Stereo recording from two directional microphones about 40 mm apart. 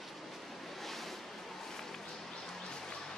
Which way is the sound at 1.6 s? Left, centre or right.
Centre.